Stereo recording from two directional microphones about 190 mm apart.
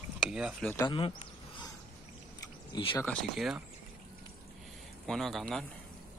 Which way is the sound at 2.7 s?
25° left (ahead or behind).